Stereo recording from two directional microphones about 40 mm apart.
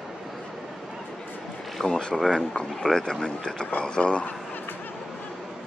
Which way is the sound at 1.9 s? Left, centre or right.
Left.